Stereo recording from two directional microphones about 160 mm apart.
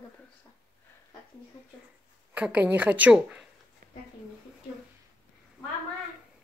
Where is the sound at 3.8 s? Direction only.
60° right (ahead or behind).